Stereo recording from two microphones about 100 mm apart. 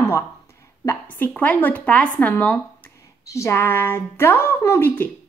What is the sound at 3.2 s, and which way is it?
A woman's voice, 30° left (ahead or behind).